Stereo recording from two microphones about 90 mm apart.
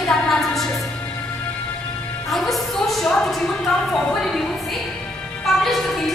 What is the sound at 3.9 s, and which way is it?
Speech, 5° left (ahead or behind).